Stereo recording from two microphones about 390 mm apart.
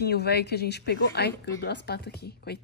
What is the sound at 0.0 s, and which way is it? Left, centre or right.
Speech, left.